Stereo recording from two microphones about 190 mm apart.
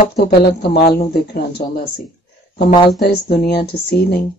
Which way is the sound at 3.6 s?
55° left (ahead or behind).